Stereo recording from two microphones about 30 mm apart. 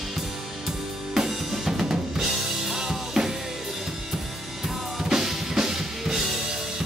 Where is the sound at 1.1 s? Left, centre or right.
Centre.